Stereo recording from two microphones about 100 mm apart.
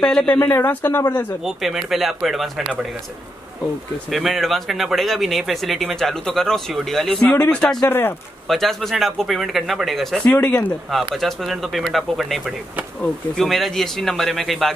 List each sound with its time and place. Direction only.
0.0 s speech: 10° left (ahead or behind)
0.4 s speech: 25° left (ahead or behind)
1.4 s speech: centre (ahead or behind)
4.1 s speech: centre (ahead or behind)
10.2 s speech: 15° left (ahead or behind)
11.1 s speech: centre (ahead or behind)